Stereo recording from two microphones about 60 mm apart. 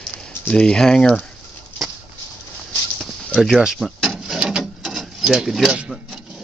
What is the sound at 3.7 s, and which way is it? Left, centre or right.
Rub, centre.